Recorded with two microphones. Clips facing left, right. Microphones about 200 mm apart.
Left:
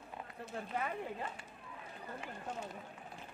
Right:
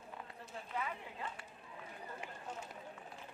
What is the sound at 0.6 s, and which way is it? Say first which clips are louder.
Speech: left 3 dB; 50° left (ahead or behind).